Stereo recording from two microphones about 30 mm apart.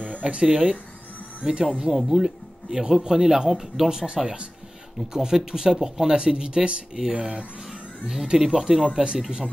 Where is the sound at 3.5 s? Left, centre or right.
Centre.